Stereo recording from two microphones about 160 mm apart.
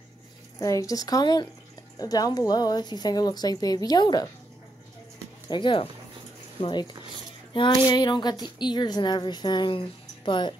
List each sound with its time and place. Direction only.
0.6 s speech: 20° left (ahead or behind)
5.5 s speech: 30° left (ahead or behind)